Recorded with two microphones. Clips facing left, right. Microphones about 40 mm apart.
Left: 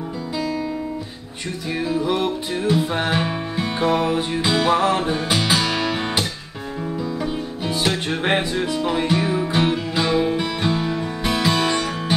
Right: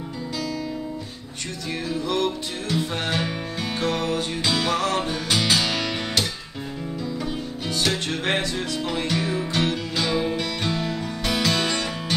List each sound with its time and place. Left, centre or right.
1.9 s music: centre
7.6 s music: centre